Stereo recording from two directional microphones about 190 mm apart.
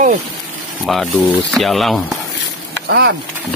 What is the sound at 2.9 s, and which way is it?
Speech, 60° right (ahead or behind).